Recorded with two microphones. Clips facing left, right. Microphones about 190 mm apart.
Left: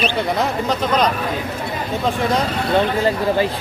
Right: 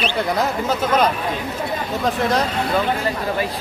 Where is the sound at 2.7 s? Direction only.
30° left (ahead or behind).